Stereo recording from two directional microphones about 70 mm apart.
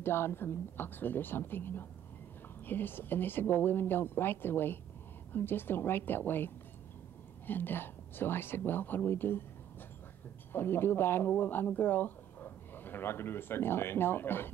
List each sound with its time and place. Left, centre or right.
0.0 s speech: left
10.5 s speech: left